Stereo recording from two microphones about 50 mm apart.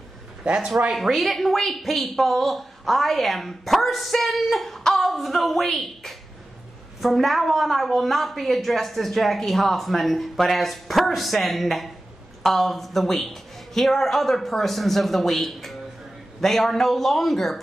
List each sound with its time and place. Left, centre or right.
0.4 s a man's voice: centre
0.9 s speech: centre